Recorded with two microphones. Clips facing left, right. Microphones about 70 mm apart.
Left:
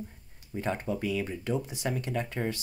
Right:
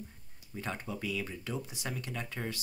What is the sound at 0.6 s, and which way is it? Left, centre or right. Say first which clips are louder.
Speech: left 7 dB; left.